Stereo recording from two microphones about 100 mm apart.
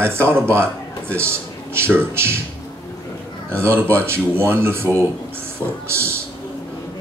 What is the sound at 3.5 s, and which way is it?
A man's voice, 25° right (ahead or behind).